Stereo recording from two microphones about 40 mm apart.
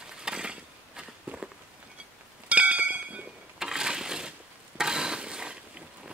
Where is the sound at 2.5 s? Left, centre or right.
Right.